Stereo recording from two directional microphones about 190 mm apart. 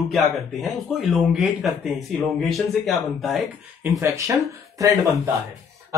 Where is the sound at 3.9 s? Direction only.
15° right (ahead or behind).